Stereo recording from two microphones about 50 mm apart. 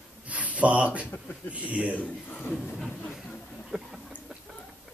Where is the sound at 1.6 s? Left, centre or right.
Right.